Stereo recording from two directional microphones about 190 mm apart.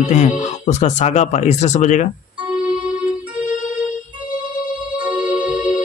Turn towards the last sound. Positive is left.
turn(degrees=-5)  # may be behind; listen again after turning